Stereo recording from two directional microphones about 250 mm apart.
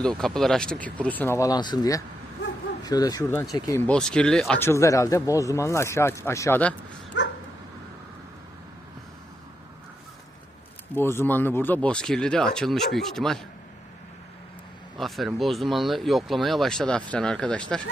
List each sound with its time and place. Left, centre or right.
0.0 s speech: centre
7.2 s dog: left
11.0 s speech: centre
15.0 s speech: centre